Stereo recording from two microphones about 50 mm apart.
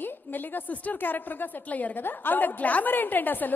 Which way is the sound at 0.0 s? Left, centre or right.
Left.